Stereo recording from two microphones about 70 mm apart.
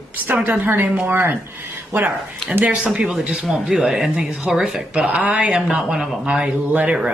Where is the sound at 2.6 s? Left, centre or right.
Centre.